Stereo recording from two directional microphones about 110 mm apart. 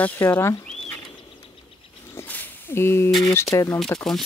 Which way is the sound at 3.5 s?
25° left (ahead or behind).